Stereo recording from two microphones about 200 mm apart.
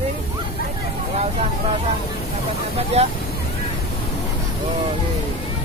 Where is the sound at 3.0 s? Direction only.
30° right (ahead or behind).